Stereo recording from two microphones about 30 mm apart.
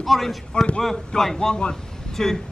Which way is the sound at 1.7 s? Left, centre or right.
Centre.